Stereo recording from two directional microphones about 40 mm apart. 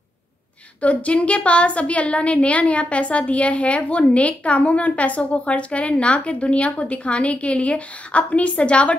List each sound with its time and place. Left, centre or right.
0.7 s a woman's voice: left